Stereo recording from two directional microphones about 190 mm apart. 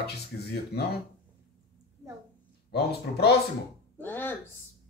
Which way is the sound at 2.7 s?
55° left (ahead or behind).